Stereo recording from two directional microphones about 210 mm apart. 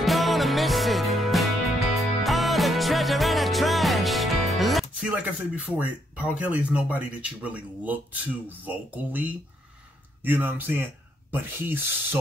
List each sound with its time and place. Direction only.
0.0 s music: centre (ahead or behind)
5.8 s speech: 5° right (ahead or behind)